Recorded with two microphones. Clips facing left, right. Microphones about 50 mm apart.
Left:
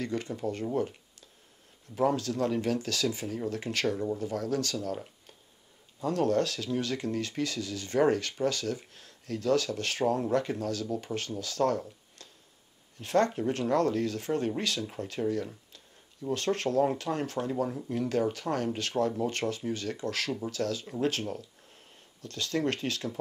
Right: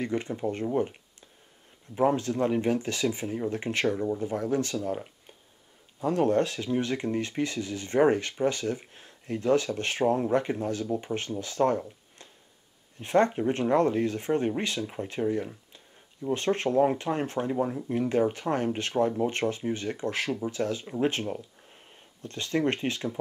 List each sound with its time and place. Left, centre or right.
0.0 s speech: right
2.0 s speech: right